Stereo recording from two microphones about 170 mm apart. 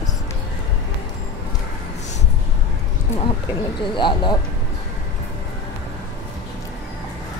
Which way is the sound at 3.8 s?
30° left (ahead or behind).